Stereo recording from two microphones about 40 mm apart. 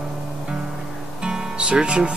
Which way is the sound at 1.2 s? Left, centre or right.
Right.